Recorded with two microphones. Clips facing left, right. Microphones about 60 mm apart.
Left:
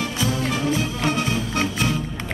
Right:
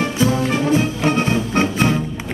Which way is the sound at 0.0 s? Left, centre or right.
Right.